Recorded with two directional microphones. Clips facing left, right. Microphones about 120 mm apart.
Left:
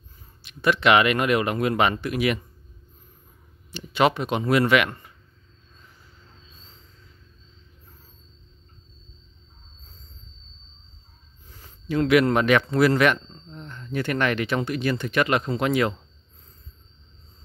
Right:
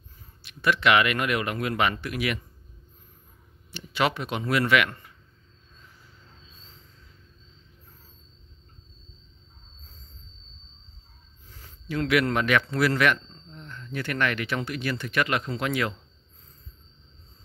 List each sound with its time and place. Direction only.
0.4 s speech: 20° left (ahead or behind)
3.7 s speech: 20° left (ahead or behind)
11.6 s a man's voice: 25° left (ahead or behind)